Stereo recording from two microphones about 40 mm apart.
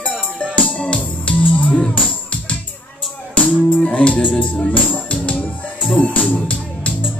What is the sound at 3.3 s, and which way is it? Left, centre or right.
Music, left.